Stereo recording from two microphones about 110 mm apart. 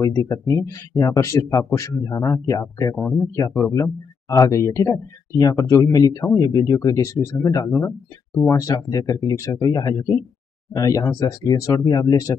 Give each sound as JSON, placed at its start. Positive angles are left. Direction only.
{"t": 0.0, "sound": "speech", "side_deg": 30}
{"t": 3.0, "sound": "speech", "side_deg": 10}
{"t": 3.3, "sound": "speech", "side_deg": 30}